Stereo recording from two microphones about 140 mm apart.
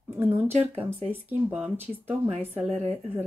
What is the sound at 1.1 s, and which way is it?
Speech, 10° right (ahead or behind).